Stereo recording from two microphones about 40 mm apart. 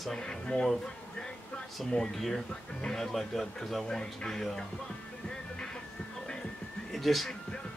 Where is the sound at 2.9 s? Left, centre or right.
Centre.